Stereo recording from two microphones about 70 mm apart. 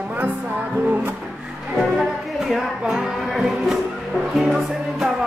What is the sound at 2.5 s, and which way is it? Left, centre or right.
Music, centre.